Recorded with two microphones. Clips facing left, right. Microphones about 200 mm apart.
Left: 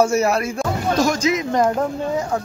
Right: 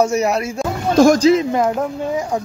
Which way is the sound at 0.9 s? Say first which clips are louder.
Right 10 dB; 50° right (ahead or behind).